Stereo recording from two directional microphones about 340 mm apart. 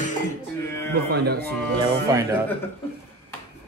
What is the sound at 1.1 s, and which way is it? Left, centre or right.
Speech, right.